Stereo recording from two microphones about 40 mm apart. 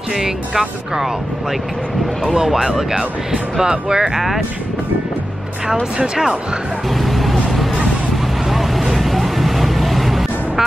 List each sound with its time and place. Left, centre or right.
0.1 s speech: centre
2.3 s speech: centre
7.1 s vehicle: centre
8.5 s vehicle: centre